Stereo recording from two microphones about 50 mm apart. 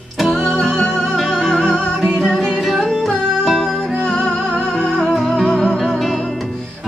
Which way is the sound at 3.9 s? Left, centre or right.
Centre.